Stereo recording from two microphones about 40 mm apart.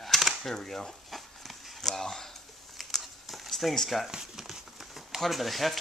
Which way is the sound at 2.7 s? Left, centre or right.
Centre.